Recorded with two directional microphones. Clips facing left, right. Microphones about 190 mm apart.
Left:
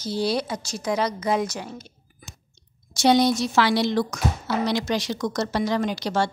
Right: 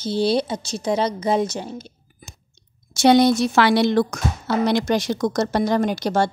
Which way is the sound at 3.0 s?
60° right (ahead or behind).